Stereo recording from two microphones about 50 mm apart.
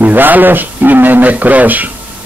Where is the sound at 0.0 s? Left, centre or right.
Right.